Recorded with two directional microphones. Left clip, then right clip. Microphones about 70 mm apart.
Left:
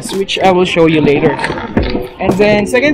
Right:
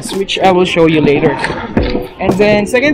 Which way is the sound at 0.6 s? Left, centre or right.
Centre.